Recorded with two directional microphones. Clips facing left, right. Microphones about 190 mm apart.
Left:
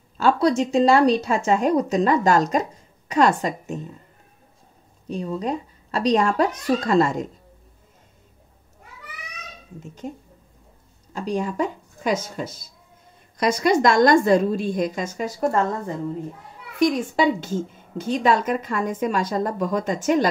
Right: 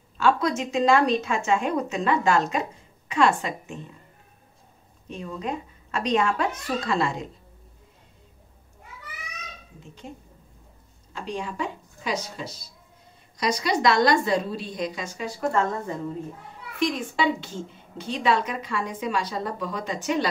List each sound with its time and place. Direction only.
0.2 s speech: 35° left (ahead or behind)
5.0 s speech: 35° left (ahead or behind)
11.1 s a woman's voice: 40° left (ahead or behind)
16.8 s a woman's voice: 45° left (ahead or behind)